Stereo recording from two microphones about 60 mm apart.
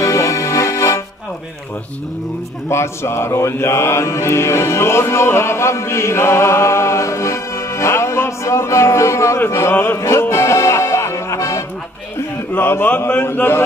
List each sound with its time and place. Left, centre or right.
0.0 s music: left
2.7 s mantra: left
10.3 s music: left
12.5 s a sound: left